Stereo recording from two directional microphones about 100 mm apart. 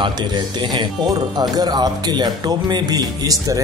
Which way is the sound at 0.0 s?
50° right (ahead or behind).